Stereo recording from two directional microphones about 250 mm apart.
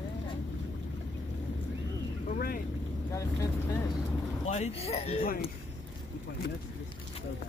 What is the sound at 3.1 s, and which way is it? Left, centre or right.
Speech, centre.